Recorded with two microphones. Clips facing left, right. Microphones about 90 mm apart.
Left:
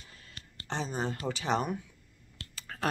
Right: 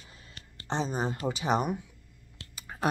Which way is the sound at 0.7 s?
20° right (ahead or behind).